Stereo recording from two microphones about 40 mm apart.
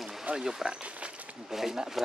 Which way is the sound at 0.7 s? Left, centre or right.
Right.